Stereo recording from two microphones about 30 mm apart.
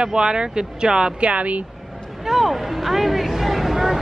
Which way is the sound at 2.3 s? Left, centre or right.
Centre.